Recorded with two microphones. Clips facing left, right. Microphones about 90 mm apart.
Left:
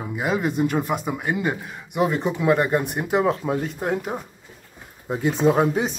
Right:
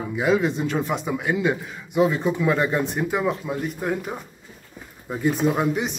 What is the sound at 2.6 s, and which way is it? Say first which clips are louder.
Dog: left 1 dB; 50° left (ahead or behind).